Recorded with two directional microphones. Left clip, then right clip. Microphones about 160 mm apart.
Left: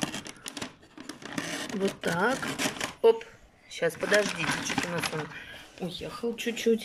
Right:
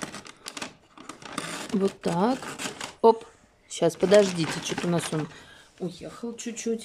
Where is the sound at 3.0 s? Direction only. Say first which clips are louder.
Right 3 dB; 40° right (ahead or behind).